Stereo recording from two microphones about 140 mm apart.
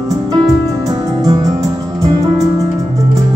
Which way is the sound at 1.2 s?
25° right (ahead or behind).